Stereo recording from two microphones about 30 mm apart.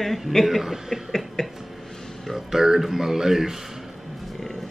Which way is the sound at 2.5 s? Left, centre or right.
Centre.